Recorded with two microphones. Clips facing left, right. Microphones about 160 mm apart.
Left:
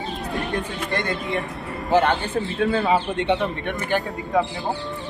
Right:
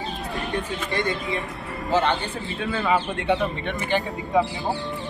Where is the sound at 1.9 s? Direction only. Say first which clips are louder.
Left 3 dB; 55° left (ahead or behind).